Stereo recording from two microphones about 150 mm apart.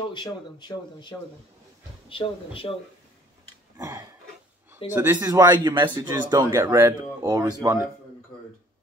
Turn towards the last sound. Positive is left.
turn(degrees=-20)  # may be behind; listen again after turning